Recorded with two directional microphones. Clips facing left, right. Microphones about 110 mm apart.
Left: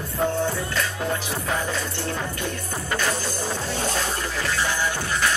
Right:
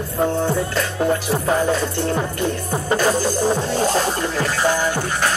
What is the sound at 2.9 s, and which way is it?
Music, 40° right (ahead or behind).